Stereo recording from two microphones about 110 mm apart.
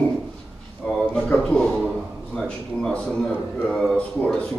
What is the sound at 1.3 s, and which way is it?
Speech, 15° left (ahead or behind).